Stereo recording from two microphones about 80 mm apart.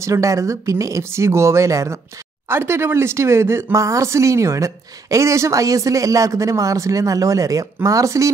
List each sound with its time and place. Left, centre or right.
0.0 s speech: right